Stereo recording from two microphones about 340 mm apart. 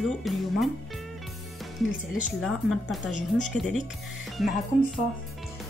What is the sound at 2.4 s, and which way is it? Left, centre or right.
Speech, centre.